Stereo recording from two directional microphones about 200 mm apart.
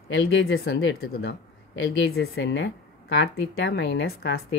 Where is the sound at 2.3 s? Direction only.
65° left (ahead or behind).